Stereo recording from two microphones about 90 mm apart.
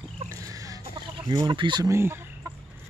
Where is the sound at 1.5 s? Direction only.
65° right (ahead or behind).